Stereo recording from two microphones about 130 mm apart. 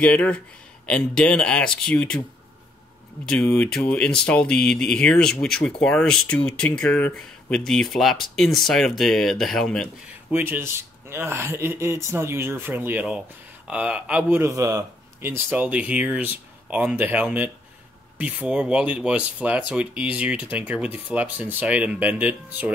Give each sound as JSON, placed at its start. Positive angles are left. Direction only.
{"t": 0.0, "sound": "speech", "side_deg": 10}
{"t": 3.3, "sound": "speech", "side_deg": 5}
{"t": 10.3, "sound": "speech", "side_deg": -15}
{"t": 14.4, "sound": "speech", "side_deg": -25}
{"t": 15.2, "sound": "speech", "side_deg": -15}